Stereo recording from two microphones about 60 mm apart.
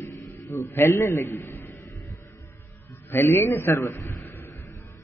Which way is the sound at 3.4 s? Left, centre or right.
Left.